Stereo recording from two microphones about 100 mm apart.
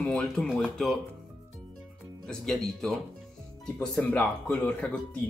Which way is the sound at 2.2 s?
5° left (ahead or behind).